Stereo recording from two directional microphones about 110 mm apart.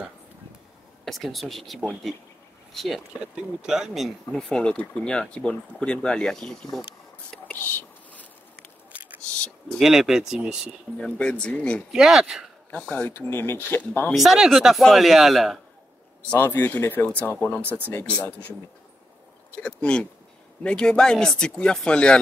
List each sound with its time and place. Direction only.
1.0 s a man's voice: centre (ahead or behind)
4.4 s speech: 10° left (ahead or behind)
7.5 s whispering: 15° left (ahead or behind)
9.2 s a sound: 10° left (ahead or behind)
9.8 s a man's voice: 5° right (ahead or behind)
11.0 s speech: 10° left (ahead or behind)
11.9 s a man's voice: 5° right (ahead or behind)
12.7 s speech: 10° left (ahead or behind)
13.1 s speech: 20° left (ahead or behind)
14.1 s a man's voice: centre (ahead or behind)
16.3 s speech: 20° left (ahead or behind)
19.6 s speech: 10° left (ahead or behind)